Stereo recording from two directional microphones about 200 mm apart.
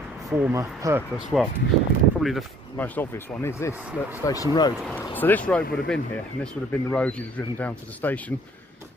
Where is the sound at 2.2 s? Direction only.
Centre (ahead or behind).